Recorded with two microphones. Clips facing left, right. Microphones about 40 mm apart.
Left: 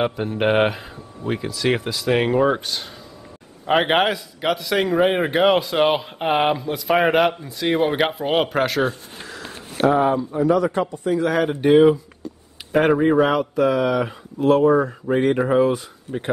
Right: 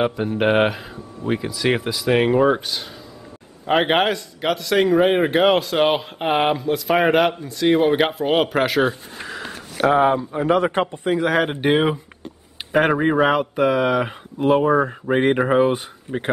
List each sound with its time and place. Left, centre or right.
0.2 s a man's voice: centre
9.8 s speech: right
10.4 s speech: right
11.2 s speech: right
12.8 s speech: centre
13.3 s speech: right